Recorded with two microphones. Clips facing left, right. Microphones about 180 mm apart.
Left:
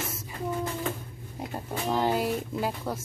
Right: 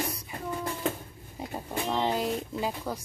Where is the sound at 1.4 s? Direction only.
5° left (ahead or behind).